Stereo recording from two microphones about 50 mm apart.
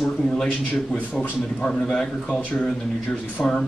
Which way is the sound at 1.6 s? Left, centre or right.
Centre.